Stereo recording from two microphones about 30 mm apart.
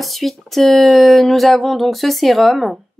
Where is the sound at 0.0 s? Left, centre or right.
Centre.